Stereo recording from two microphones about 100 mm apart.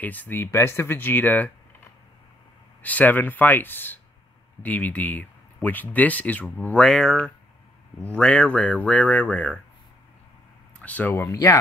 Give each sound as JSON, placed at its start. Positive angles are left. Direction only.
{"t": 0.0, "sound": "speech", "side_deg": 15}
{"t": 2.8, "sound": "speech", "side_deg": 15}
{"t": 10.8, "sound": "a sound", "side_deg": 15}
{"t": 11.1, "sound": "speech", "side_deg": 30}